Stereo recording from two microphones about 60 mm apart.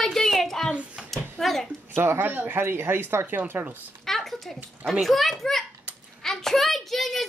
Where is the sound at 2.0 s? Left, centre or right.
Right.